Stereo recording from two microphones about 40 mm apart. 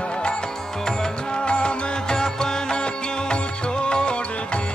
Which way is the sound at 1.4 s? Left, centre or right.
Left.